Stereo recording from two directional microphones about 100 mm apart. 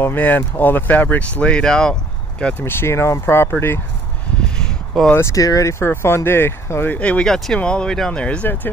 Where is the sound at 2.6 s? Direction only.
25° left (ahead or behind).